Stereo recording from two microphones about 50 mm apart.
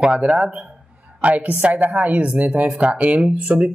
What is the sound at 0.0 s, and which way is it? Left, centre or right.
A woman's voice, right.